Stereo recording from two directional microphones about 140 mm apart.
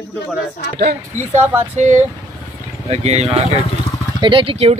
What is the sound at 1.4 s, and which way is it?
Speech, 15° right (ahead or behind).